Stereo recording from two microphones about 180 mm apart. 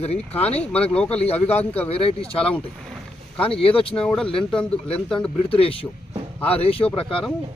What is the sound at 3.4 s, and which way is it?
Speech, 30° left (ahead or behind).